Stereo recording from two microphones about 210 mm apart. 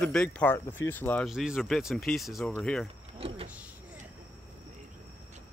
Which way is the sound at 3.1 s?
25° right (ahead or behind).